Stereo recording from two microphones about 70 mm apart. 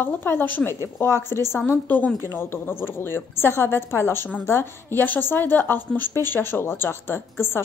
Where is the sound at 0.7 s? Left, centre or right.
Left.